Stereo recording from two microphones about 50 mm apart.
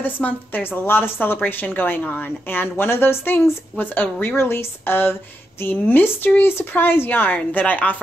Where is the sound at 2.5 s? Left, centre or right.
Left.